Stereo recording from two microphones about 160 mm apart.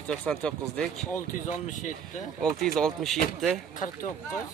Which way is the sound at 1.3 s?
50° left (ahead or behind).